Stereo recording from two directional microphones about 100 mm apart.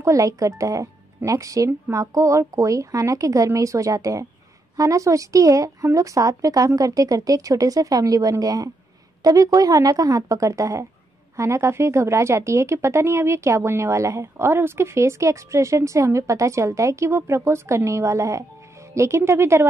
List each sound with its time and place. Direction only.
0.0 s speech: 35° right (ahead or behind)